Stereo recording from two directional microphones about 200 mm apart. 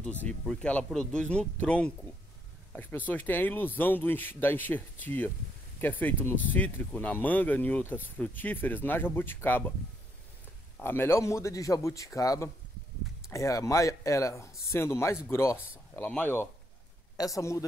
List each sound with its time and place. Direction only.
0.0 s speech: 5° left (ahead or behind)
10.8 s speech: 10° left (ahead or behind)